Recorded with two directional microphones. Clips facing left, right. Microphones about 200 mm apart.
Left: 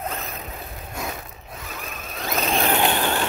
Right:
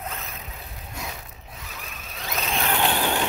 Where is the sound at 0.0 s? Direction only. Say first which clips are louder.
Left 5 dB; 40° left (ahead or behind).